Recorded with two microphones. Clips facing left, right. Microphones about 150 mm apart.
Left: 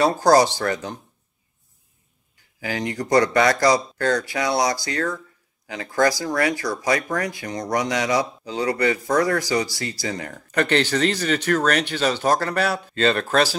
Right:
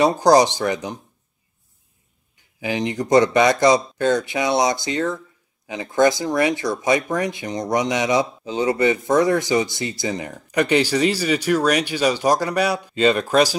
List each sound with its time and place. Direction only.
0.0 s speech: 20° right (ahead or behind)
2.6 s speech: 20° right (ahead or behind)